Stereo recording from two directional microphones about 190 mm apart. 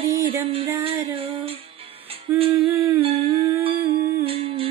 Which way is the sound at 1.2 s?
30° right (ahead or behind).